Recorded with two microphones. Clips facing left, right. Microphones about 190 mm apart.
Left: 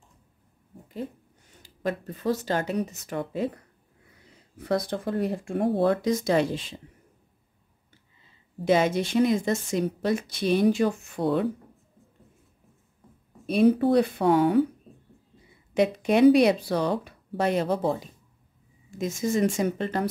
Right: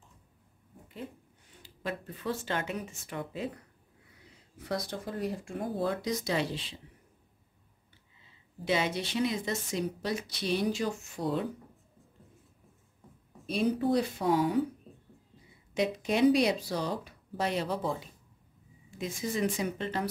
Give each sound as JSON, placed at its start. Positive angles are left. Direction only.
{"t": 1.6, "sound": "speech", "side_deg": 45}
{"t": 4.6, "sound": "speech", "side_deg": 55}
{"t": 8.6, "sound": "a woman's voice", "side_deg": 45}
{"t": 13.5, "sound": "speech", "side_deg": 60}
{"t": 15.7, "sound": "a woman's voice", "side_deg": 60}